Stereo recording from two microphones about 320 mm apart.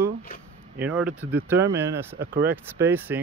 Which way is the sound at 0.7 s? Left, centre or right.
Centre.